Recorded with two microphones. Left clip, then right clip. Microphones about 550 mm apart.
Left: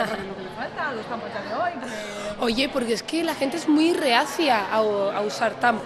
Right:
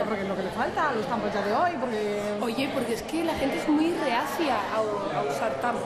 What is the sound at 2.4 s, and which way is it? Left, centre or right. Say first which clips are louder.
A woman's voice: left 4 dB; left.